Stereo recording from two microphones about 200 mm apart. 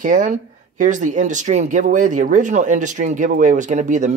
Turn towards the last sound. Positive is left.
turn(degrees=-35)  # may be behind; listen again after turning